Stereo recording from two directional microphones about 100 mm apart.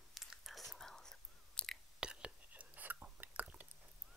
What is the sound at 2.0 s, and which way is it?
Chewing, 10° right (ahead or behind).